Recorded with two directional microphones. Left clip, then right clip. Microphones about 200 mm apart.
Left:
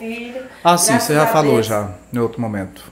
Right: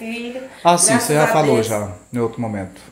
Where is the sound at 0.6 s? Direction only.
10° left (ahead or behind).